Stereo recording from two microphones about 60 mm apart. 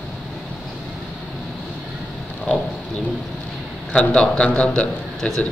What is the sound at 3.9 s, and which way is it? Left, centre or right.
Speech, centre.